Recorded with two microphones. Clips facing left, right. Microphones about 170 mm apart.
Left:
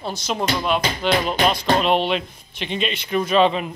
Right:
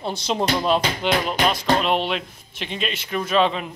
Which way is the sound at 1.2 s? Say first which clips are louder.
Left 1 dB; centre (ahead or behind).